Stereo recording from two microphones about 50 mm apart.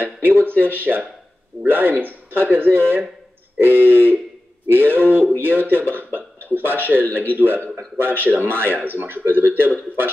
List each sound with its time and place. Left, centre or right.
0.0 s speech: right